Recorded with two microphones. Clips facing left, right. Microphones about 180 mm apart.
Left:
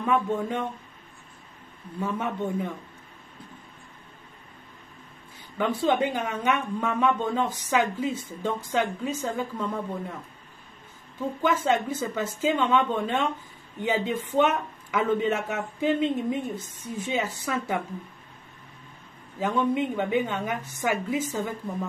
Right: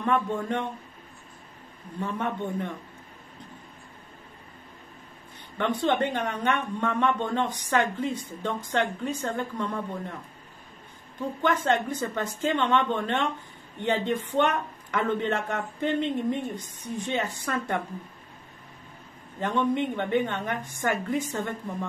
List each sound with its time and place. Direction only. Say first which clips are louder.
0.0 s speech: left 1 dB; 5° left (ahead or behind)
2.0 s a woman's voice: left 1 dB; 5° left (ahead or behind)
5.6 s speech: left 1 dB; 5° left (ahead or behind)
11.4 s speech: left 1 dB; 5° left (ahead or behind)
19.3 s a woman's voice: left 1 dB; 5° left (ahead or behind)